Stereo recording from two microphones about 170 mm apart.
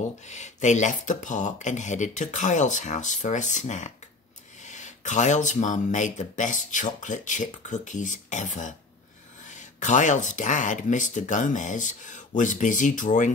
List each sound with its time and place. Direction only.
0.3 s speech: 45° left (ahead or behind)